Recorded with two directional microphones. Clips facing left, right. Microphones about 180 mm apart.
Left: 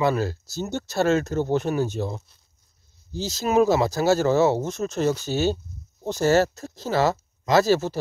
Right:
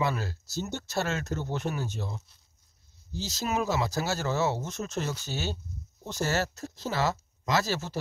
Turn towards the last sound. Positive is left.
turn(degrees=35)  # may be behind; listen again after turning